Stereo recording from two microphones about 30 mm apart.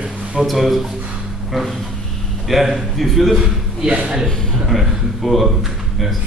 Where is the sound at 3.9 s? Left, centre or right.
Right.